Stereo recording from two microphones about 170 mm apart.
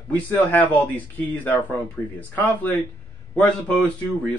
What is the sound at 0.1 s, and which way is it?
Speech, 10° left (ahead or behind).